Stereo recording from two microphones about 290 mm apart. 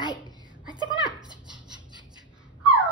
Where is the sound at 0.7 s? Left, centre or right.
Centre.